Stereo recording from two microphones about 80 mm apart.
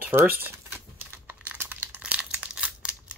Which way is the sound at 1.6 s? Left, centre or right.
Right.